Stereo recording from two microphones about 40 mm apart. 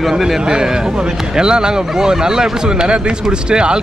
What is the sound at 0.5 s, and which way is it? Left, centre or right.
Speech, centre.